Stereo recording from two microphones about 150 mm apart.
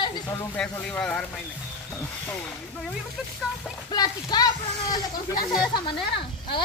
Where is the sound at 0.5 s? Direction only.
5° left (ahead or behind).